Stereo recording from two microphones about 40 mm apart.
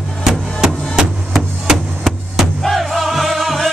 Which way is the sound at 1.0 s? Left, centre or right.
Centre.